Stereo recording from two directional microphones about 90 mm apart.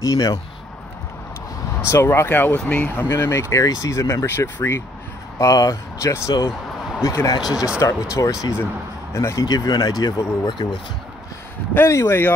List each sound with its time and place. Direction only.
0.0 s speech: 45° left (ahead or behind)
1.9 s speech: 30° left (ahead or behind)
7.4 s speech: 10° right (ahead or behind)
7.8 s speech: 40° left (ahead or behind)
9.4 s speech: 45° left (ahead or behind)
11.7 s speech: 30° left (ahead or behind)